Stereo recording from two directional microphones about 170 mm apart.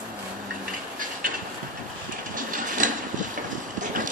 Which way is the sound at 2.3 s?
50° right (ahead or behind).